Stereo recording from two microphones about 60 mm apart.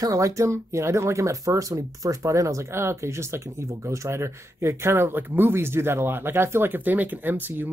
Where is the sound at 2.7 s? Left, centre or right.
Right.